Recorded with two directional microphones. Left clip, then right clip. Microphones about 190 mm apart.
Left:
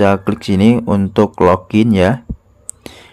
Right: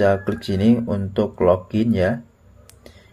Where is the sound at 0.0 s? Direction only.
25° left (ahead or behind).